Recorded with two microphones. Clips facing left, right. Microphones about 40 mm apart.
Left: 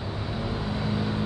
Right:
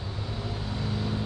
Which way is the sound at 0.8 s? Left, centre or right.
Centre.